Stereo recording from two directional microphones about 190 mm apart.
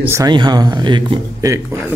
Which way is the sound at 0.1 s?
20° right (ahead or behind).